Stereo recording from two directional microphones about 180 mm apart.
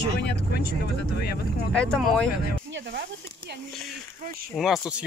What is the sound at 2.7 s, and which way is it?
Speech, 70° right (ahead or behind).